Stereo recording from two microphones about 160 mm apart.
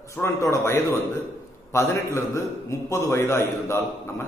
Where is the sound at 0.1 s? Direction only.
20° left (ahead or behind).